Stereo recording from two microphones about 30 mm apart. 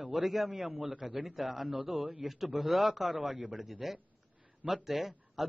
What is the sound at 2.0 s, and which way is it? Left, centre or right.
Speech, right.